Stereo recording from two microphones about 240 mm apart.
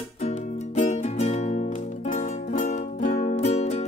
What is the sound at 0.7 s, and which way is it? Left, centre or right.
Music, left.